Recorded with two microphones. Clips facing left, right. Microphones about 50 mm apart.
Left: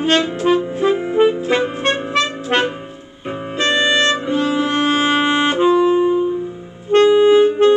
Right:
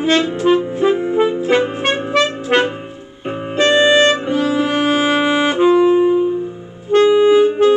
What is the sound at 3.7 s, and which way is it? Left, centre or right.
Music, right.